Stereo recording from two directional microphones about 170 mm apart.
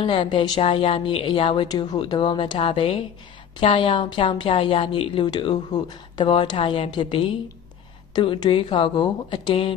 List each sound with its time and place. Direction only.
0.0 s a woman's voice: 30° left (ahead or behind)